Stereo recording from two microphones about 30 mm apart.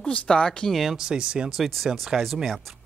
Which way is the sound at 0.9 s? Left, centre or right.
Right.